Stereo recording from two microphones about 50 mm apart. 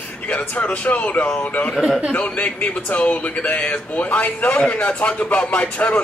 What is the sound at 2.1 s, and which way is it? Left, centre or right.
A man's voice, left.